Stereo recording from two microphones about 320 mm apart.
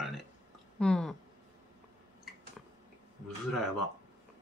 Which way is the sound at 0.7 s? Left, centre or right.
Centre.